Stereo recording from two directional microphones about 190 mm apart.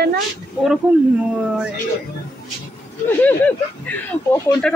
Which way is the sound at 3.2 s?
10° left (ahead or behind).